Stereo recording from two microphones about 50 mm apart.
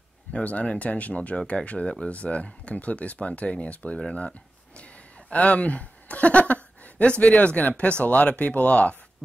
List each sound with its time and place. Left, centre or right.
0.3 s speech: left